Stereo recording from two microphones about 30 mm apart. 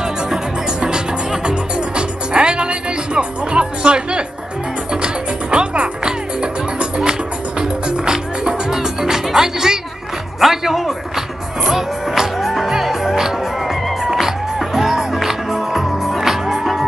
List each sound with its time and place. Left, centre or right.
0.0 s music: right
13.8 s music: centre
14.2 s music: centre